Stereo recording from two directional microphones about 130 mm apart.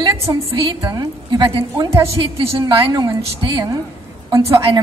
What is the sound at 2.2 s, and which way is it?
A woman's voice, 45° right (ahead or behind).